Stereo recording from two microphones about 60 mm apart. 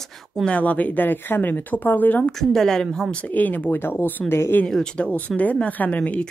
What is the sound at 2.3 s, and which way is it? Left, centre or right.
Speech, centre.